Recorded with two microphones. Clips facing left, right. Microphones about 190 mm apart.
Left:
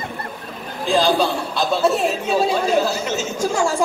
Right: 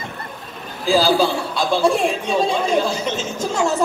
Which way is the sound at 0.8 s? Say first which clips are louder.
Right 1 dB; centre (ahead or behind).